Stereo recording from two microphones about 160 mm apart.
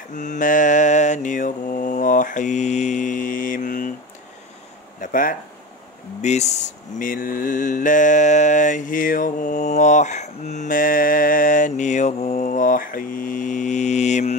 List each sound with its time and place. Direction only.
0.1 s mantra: 55° left (ahead or behind)
5.0 s a sound: 55° left (ahead or behind)
6.2 s mantra: 45° left (ahead or behind)